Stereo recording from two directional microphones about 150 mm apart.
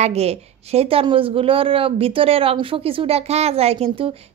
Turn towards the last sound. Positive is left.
turn(degrees=-40)  # may be behind; listen again after turning